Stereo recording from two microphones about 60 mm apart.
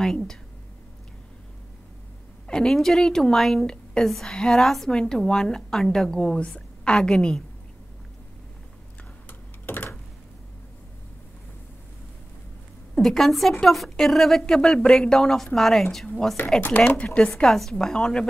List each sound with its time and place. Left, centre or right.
0.0 s a woman's voice: centre
2.4 s a woman's voice: centre
12.9 s a woman's voice: centre
16.6 s speech: left
17.3 s a woman's voice: centre